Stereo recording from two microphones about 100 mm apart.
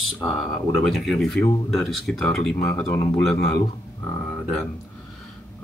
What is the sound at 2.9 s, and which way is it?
Speech, 30° left (ahead or behind).